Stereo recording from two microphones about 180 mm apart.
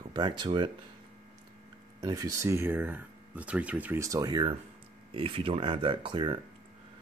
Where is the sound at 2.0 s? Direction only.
20° right (ahead or behind).